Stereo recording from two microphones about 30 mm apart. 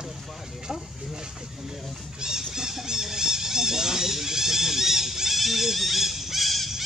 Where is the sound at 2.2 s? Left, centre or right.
Right.